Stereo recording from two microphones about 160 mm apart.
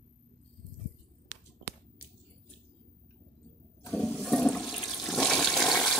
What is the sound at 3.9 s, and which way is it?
Ratchet, centre (ahead or behind).